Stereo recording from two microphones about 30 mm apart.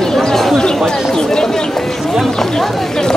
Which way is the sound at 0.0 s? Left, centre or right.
Centre.